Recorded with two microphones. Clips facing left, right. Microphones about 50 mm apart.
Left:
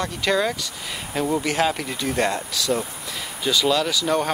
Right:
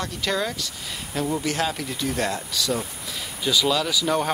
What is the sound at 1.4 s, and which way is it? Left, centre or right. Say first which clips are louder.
Speech: left 4 dB; centre.